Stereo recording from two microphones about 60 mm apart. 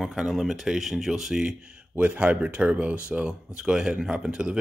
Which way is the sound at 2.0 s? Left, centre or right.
Right.